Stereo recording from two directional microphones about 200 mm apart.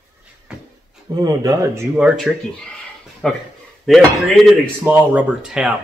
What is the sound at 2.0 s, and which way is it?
A man's voice, centre (ahead or behind).